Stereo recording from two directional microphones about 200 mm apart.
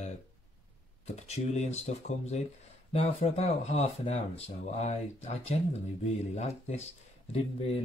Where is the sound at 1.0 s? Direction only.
35° left (ahead or behind).